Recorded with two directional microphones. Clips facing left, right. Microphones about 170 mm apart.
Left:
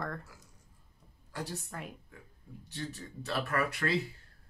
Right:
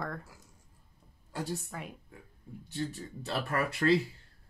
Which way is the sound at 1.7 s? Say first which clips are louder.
Right 1 dB; centre (ahead or behind).